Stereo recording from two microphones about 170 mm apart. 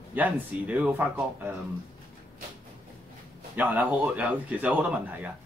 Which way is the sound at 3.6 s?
10° right (ahead or behind).